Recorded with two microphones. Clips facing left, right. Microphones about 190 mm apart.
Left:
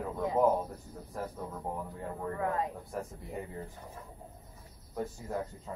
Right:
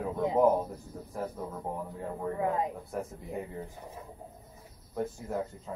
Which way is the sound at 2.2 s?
20° right (ahead or behind).